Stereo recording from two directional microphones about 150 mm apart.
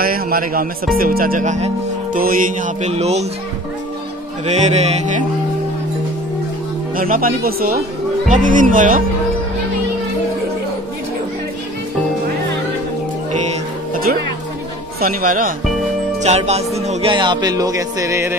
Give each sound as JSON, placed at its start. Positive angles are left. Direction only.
{"t": 0.0, "sound": "music", "side_deg": -75}
{"t": 2.1, "sound": "music", "side_deg": -70}
{"t": 2.9, "sound": "music", "side_deg": -45}
{"t": 4.5, "sound": "music", "side_deg": -50}
{"t": 7.0, "sound": "music", "side_deg": -70}
{"t": 8.3, "sound": "speech", "side_deg": -60}
{"t": 15.0, "sound": "music", "side_deg": -70}
{"t": 16.2, "sound": "music", "side_deg": -45}
{"t": 17.1, "sound": "music", "side_deg": -30}